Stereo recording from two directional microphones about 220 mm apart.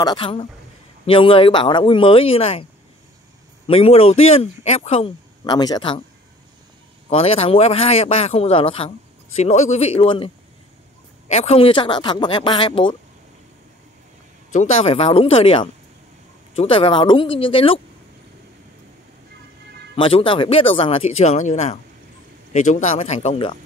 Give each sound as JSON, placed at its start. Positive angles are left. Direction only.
{"t": 0.0, "sound": "speech", "side_deg": 20}
{"t": 3.6, "sound": "speech", "side_deg": 25}
{"t": 7.1, "sound": "speech", "side_deg": 25}
{"t": 11.3, "sound": "speech", "side_deg": 25}
{"t": 14.5, "sound": "speech", "side_deg": 30}
{"t": 20.0, "sound": "speech", "side_deg": 25}